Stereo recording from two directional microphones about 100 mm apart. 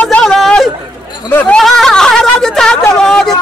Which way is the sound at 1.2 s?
20° left (ahead or behind).